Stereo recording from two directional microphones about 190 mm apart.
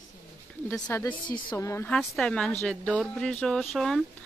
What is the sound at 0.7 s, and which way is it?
Speech, 10° left (ahead or behind).